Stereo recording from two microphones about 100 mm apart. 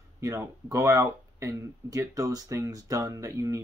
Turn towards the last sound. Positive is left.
turn(degrees=-30)  # may be behind; listen again after turning